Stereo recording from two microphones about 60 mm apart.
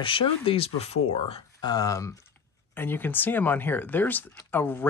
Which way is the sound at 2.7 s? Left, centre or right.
Left.